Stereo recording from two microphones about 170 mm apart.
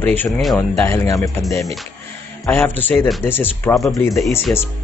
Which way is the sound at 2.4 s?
10° left (ahead or behind).